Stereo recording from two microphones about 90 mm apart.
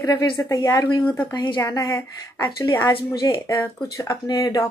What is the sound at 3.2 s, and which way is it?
Speech, 40° left (ahead or behind).